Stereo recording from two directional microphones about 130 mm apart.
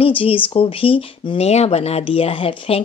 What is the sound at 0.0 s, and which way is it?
Speech, 45° left (ahead or behind).